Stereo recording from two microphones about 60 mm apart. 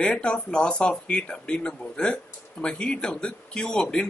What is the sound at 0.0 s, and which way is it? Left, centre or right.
Speech, centre.